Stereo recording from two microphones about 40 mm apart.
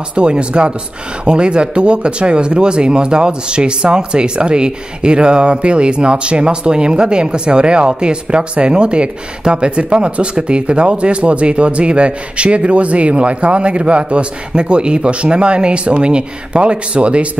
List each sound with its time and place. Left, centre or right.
0.1 s speech: right